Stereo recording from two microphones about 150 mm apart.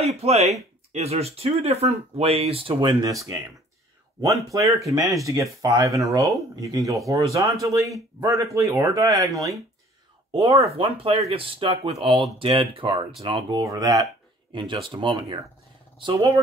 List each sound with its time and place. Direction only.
0.0 s speech: 45° right (ahead or behind)
3.1 s speech: 20° right (ahead or behind)
4.5 s speech: 20° right (ahead or behind)
10.7 s speech: 40° right (ahead or behind)
13.6 s speech: 25° right (ahead or behind)